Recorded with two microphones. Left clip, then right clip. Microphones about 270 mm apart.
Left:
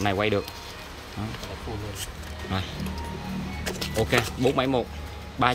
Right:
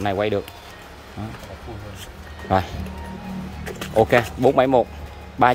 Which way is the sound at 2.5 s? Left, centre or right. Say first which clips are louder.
Right 13 dB; centre.